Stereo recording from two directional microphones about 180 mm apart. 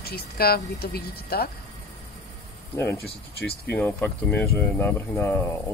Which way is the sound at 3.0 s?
60° left (ahead or behind).